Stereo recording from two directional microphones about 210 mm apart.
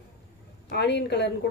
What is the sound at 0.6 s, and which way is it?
Speech, 55° left (ahead or behind).